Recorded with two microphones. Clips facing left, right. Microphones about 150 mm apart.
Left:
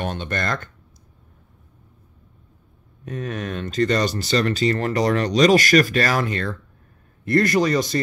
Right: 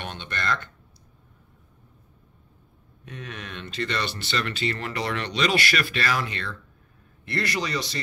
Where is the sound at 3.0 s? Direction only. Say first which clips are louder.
Left 10 dB; 45° left (ahead or behind).